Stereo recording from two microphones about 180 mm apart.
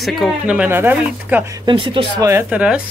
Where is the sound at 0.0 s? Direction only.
Centre (ahead or behind).